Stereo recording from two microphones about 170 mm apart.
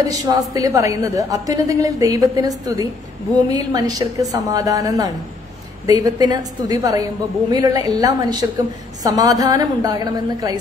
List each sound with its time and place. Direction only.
0.3 s a woman's voice: 20° right (ahead or behind)